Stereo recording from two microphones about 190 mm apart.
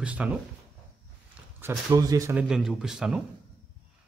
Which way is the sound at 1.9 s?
20° right (ahead or behind).